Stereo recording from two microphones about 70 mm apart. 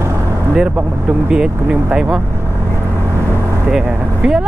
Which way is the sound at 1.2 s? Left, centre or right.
Centre.